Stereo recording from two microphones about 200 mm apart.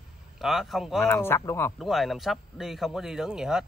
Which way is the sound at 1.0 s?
10° left (ahead or behind).